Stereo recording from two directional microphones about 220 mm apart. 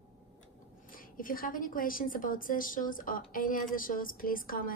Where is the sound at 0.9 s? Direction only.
40° left (ahead or behind).